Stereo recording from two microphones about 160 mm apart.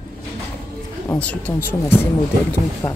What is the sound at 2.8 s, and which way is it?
Speech, 30° left (ahead or behind).